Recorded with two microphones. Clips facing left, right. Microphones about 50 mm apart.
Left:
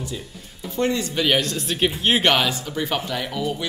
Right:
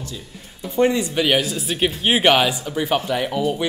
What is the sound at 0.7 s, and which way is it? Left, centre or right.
Speech, centre.